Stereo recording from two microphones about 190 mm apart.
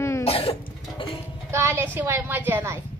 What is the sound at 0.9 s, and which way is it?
Music, 25° left (ahead or behind).